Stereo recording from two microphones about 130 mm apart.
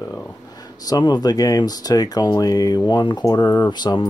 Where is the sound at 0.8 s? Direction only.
30° left (ahead or behind).